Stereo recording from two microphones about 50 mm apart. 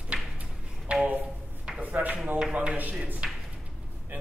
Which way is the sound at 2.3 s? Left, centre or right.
Right.